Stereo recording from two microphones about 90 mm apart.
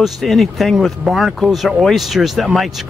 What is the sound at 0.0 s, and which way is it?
Speech, centre (ahead or behind).